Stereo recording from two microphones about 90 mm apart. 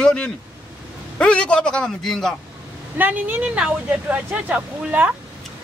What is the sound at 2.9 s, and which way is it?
Speech, 20° right (ahead or behind).